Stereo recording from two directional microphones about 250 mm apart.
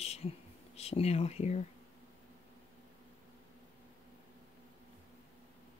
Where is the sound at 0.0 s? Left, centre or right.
Left.